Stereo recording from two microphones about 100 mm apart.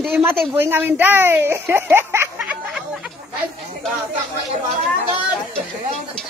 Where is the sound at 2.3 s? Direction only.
5° right (ahead or behind).